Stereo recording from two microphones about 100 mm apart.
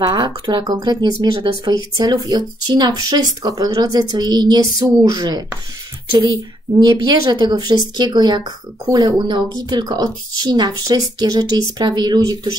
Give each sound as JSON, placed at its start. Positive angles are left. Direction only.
{"t": 0.0, "sound": "a woman's voice", "side_deg": -45}